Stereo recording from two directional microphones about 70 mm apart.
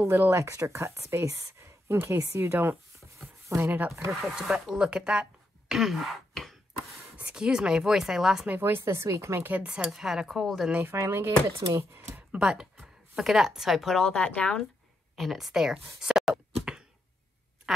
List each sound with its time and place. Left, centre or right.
0.1 s speech: right
2.4 s a sound: right
3.6 s speech: right
4.4 s speech: centre
7.2 s a woman's voice: centre
8.5 s speech: right
9.5 s a woman's voice: centre
10.9 s speech: right
12.2 s a sound: centre
12.8 s speech: centre
13.9 s speech: centre
15.1 s speech: centre
16.7 s arrow: centre
17.7 s speech: centre